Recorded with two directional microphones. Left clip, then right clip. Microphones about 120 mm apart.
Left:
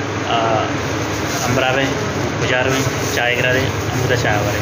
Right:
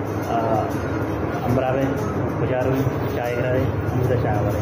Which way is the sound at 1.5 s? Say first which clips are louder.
Left 5 dB; 10° left (ahead or behind).